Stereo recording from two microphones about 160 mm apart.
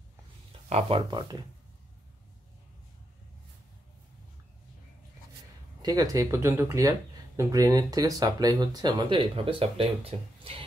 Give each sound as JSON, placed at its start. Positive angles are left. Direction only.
{"t": 0.7, "sound": "speech", "side_deg": -40}
{"t": 5.8, "sound": "speech", "side_deg": -25}